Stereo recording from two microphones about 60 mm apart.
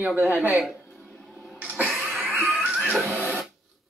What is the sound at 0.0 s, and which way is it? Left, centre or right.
Speech, centre.